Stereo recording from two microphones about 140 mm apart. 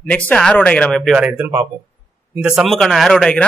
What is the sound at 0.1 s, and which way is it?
Speech, 10° left (ahead or behind).